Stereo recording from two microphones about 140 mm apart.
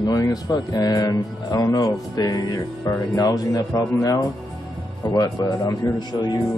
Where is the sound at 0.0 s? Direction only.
25° left (ahead or behind).